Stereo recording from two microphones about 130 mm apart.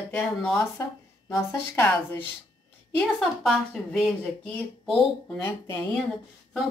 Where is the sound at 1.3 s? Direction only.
20° left (ahead or behind).